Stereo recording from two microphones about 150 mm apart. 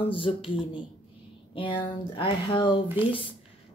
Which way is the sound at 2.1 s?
35° left (ahead or behind).